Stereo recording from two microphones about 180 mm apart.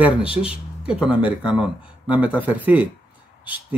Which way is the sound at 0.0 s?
5° right (ahead or behind).